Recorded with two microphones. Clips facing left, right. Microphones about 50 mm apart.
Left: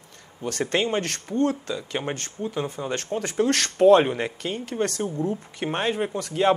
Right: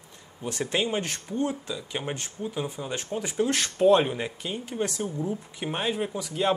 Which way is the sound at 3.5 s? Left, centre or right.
Left.